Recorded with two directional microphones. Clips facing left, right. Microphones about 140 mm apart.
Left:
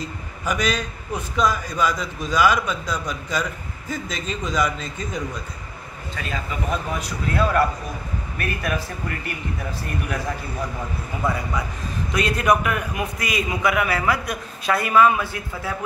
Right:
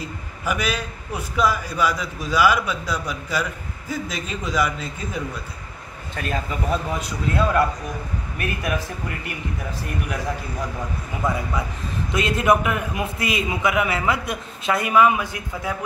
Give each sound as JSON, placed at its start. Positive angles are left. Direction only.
{"t": 0.5, "sound": "a man's voice", "side_deg": -10}
{"t": 6.7, "sound": "a man's voice", "side_deg": -25}
{"t": 12.1, "sound": "a man's voice", "side_deg": -25}